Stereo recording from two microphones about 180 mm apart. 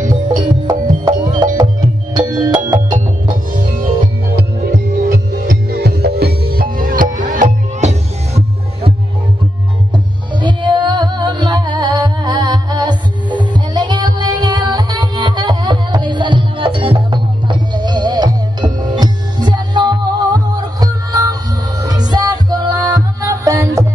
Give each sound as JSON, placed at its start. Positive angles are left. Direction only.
{"t": 1.0, "sound": "music", "side_deg": -25}
{"t": 4.4, "sound": "music", "side_deg": -60}
{"t": 10.3, "sound": "music", "side_deg": -25}